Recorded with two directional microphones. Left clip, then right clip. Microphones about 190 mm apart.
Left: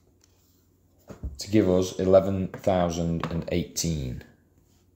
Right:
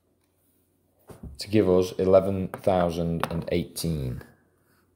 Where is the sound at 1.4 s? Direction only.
20° right (ahead or behind).